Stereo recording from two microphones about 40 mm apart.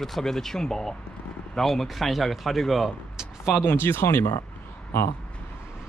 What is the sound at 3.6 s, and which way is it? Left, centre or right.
Speech, left.